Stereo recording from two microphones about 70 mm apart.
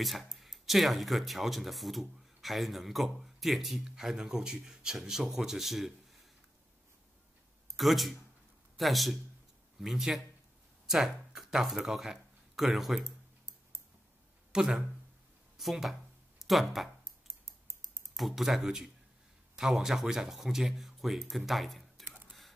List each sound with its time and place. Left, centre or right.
0.0 s speech: centre
7.7 s speech: centre
14.5 s speech: centre
17.3 s typing: right
18.1 s speech: centre